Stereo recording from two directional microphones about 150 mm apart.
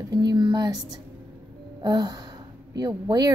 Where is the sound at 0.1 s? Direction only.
25° right (ahead or behind).